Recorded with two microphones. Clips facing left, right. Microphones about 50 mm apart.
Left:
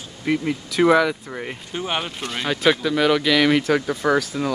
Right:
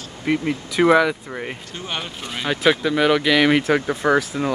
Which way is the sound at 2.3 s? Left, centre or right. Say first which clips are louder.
Right 1 dB; centre.